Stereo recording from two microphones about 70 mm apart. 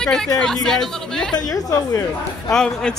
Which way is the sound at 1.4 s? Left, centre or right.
Left.